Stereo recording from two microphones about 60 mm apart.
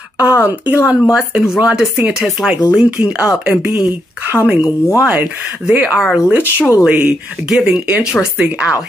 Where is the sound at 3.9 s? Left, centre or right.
Right.